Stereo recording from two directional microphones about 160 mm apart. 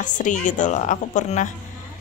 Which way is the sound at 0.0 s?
50° left (ahead or behind).